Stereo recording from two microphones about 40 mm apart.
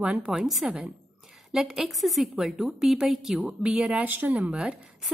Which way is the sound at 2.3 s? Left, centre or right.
Centre.